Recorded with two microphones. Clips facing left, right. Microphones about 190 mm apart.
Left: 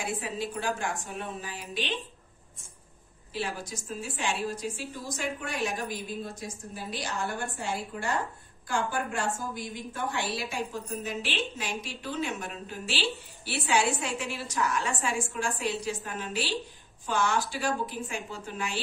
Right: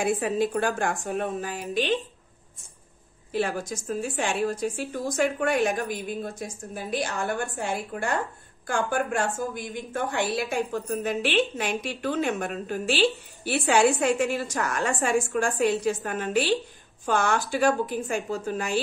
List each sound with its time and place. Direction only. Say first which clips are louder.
0.0 s a woman's voice: right 9 dB; 55° right (ahead or behind)
3.3 s a woman's voice: right 7 dB; 50° right (ahead or behind)
8.6 s a woman's voice: right 4 dB; 55° right (ahead or behind)